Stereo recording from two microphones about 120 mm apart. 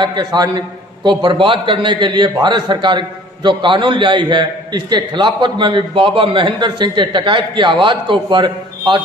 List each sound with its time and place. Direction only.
0.0 s a man's voice: 35° right (ahead or behind)